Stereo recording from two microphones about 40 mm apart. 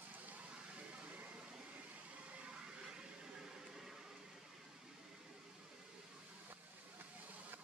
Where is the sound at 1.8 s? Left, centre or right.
Right.